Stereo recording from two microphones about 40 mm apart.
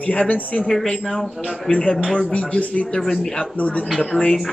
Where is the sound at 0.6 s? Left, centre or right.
Centre.